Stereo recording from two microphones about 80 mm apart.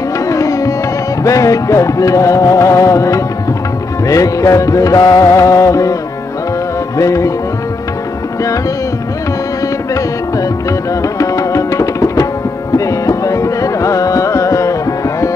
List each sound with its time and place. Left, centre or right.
0.3 s music: left
7.0 s music: left
11.0 s tabla: left
12.7 s music: left